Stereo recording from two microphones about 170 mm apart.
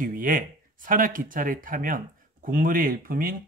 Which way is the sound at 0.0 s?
55° right (ahead or behind).